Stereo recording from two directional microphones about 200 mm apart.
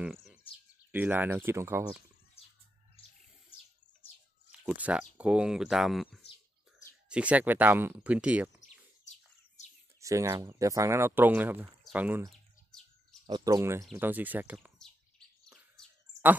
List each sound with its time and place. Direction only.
0.0 s bird: centre (ahead or behind)
0.9 s speech: 10° right (ahead or behind)
2.4 s a sound: 30° left (ahead or behind)
4.5 s speech: 5° right (ahead or behind)
9.6 s bird: 35° left (ahead or behind)
9.9 s speech: 15° right (ahead or behind)
12.3 s bird: centre (ahead or behind)
13.3 s speech: 20° right (ahead or behind)
15.8 s a sound: 5° left (ahead or behind)